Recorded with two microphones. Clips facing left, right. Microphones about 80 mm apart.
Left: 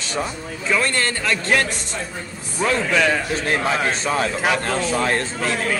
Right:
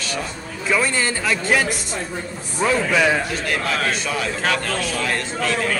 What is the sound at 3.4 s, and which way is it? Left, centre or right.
Speech, left.